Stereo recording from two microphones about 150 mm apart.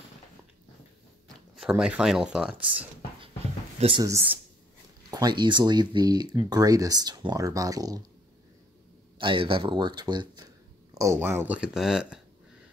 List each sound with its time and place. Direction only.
1.6 s speech: 5° right (ahead or behind)
3.8 s speech: 45° right (ahead or behind)
5.1 s speech: 30° right (ahead or behind)
9.2 s speech: 35° right (ahead or behind)
11.0 s speech: 15° right (ahead or behind)